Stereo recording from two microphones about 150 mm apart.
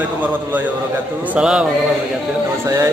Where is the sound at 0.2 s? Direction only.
10° right (ahead or behind).